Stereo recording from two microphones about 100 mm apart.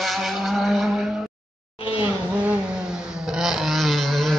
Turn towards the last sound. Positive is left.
turn(degrees=0)  # may be behind; listen again after turning